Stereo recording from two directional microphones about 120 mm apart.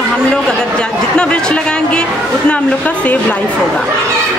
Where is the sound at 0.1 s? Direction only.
5° left (ahead or behind).